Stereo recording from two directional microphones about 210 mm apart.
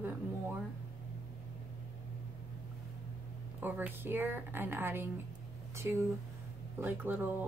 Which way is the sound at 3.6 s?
10° right (ahead or behind).